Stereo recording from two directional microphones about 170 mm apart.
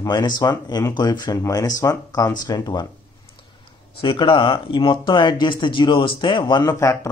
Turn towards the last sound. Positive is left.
turn(degrees=20)  # may be behind; listen again after turning